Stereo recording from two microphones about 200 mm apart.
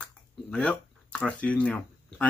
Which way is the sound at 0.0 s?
5° left (ahead or behind).